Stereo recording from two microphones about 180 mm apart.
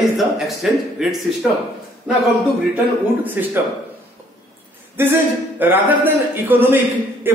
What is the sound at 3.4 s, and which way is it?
Speech, 10° right (ahead or behind).